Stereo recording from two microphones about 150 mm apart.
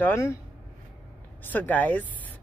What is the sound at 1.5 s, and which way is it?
Speech, 10° left (ahead or behind).